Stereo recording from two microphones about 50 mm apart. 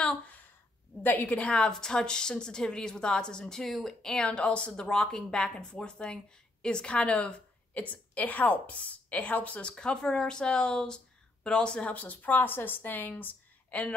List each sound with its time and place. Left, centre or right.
0.0 s a sound: left
1.0 s a woman's voice: left
1.6 s a woman's voice: centre